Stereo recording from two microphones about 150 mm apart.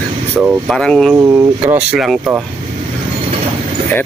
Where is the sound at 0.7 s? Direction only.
5° left (ahead or behind).